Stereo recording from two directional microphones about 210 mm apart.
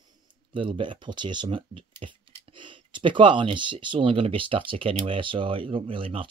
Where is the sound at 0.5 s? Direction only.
25° right (ahead or behind).